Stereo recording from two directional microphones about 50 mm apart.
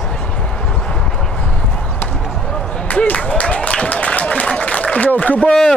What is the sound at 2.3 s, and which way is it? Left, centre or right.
Basketball bounce, centre.